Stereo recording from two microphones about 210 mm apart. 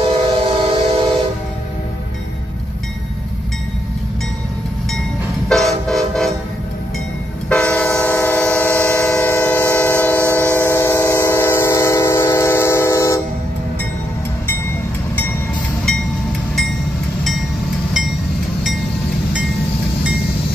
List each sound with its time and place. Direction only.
0.5 s train: 25° right (ahead or behind)
5.5 s train: centre (ahead or behind)
7.4 s train: 5° left (ahead or behind)